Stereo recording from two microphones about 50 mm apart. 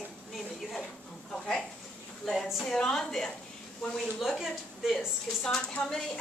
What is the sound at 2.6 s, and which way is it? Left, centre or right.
A woman's voice, centre.